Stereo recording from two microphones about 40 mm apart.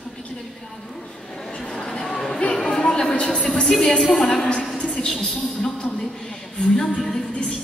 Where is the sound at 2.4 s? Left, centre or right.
Centre.